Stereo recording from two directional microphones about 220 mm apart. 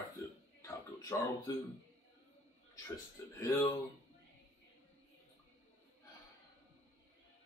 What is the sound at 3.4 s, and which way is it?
Speech, 15° left (ahead or behind).